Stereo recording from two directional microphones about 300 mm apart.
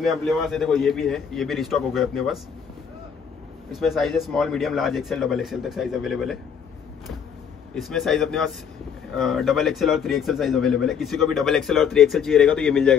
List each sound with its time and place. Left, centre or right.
0.0 s a man's voice: centre
3.7 s a man's voice: centre
7.7 s a man's voice: centre